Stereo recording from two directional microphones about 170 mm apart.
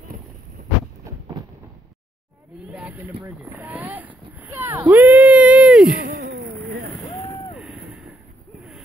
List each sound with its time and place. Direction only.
2.7 s a sound: 5° right (ahead or behind)
6.5 s boat: 10° left (ahead or behind)
7.5 s vehicle: centre (ahead or behind)